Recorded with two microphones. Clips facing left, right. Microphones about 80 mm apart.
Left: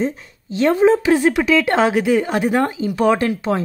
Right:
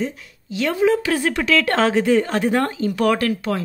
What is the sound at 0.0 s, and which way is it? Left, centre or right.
A woman's voice, left.